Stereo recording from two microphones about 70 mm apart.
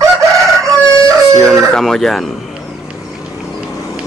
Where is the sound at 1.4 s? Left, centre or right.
Centre.